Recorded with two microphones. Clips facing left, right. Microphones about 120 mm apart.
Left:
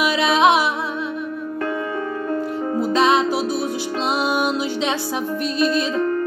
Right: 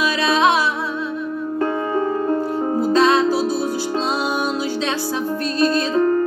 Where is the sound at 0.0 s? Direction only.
15° left (ahead or behind).